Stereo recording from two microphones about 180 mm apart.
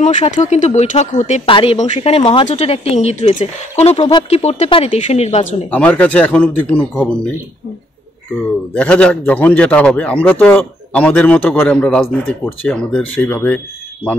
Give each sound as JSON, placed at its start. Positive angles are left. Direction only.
{"t": 0.0, "sound": "speech", "side_deg": 40}
{"t": 5.7, "sound": "a man's voice", "side_deg": 10}
{"t": 8.7, "sound": "a man's voice", "side_deg": 10}